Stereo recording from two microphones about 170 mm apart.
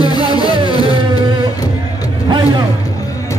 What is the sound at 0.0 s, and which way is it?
Music, 25° left (ahead or behind).